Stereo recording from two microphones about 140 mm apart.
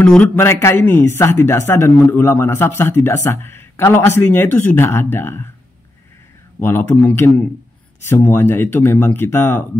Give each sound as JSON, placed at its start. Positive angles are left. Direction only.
{"t": 0.0, "sound": "speech", "side_deg": 10}
{"t": 6.6, "sound": "speech", "side_deg": 15}